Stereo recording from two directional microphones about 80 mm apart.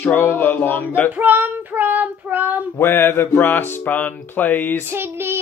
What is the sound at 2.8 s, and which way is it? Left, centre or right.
Music, left.